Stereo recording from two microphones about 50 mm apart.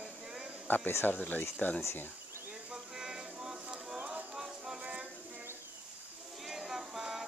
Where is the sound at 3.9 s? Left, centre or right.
Right.